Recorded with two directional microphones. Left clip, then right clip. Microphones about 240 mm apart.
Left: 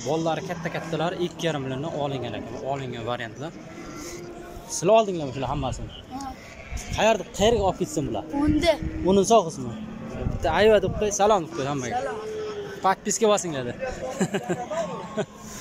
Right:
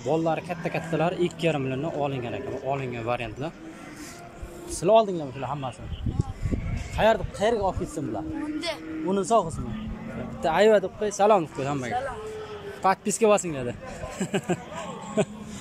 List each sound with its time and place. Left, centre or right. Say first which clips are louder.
0.1 s speech: right 1 dB; centre
4.7 s speech: left 1 dB; centre
7.0 s a man's voice: left 1 dB; centre
8.7 s speech: left 11 dB; left
9.0 s a man's voice: left 4 dB; centre
10.4 s speech: left 1 dB; centre